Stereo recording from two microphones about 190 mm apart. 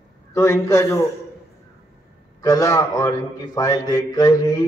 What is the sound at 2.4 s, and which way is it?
A man's voice, 15° left (ahead or behind).